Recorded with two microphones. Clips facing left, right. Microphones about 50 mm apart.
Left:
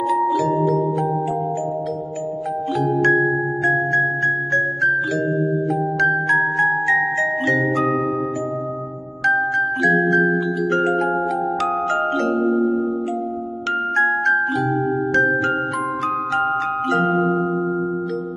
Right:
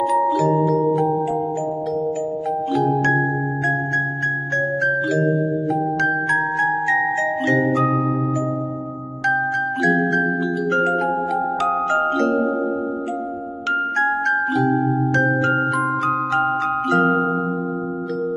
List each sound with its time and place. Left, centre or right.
0.3 s music: left
0.6 s music: right
2.7 s music: left
4.6 s music: left
9.8 s music: left
12.0 s music: left
14.0 s music: left
16.9 s music: right